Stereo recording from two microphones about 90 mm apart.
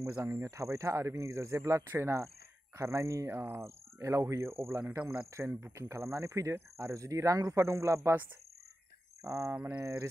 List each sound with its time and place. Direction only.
0.0 s speech: 35° right (ahead or behind)
9.2 s speech: 35° right (ahead or behind)
9.6 s mantra: 15° right (ahead or behind)